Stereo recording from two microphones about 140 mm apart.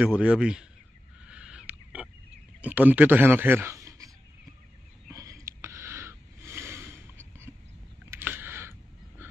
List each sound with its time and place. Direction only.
0.1 s a man's voice: 5° right (ahead or behind)
1.2 s owl: 10° right (ahead or behind)
2.6 s speech: 10° right (ahead or behind)
5.1 s a sound: 25° right (ahead or behind)